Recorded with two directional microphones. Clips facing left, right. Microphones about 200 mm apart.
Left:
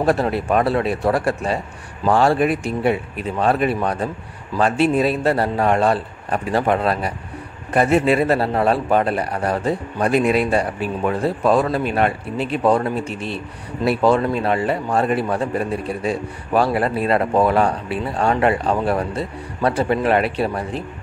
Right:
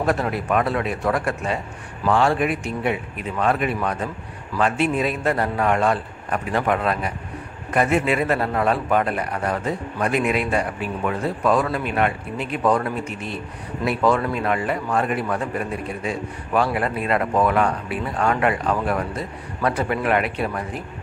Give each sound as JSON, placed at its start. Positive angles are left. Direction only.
{"t": 0.0, "sound": "a man's voice", "side_deg": 30}